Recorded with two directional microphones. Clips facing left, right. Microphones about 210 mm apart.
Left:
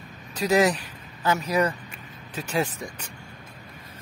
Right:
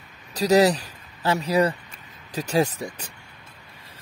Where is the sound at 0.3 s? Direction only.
35° right (ahead or behind).